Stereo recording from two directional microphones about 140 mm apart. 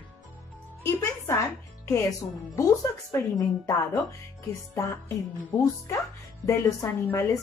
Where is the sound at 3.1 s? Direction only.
20° left (ahead or behind).